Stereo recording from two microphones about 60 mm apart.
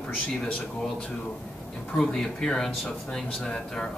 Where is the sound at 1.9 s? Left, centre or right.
Centre.